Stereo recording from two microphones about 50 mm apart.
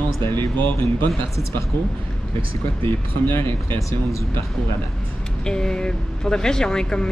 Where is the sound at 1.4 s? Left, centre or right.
Left.